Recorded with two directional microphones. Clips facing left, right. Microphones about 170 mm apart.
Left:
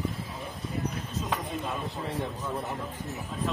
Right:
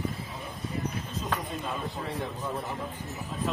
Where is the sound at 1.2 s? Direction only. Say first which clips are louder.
Even; centre (ahead or behind).